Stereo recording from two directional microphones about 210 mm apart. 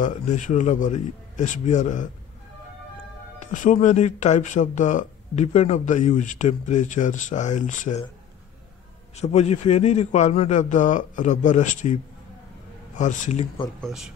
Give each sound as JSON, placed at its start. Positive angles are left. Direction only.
{"t": 0.0, "sound": "speech", "side_deg": 35}
{"t": 3.3, "sound": "speech", "side_deg": 40}
{"t": 9.1, "sound": "speech", "side_deg": 30}
{"t": 13.7, "sound": "speech", "side_deg": 0}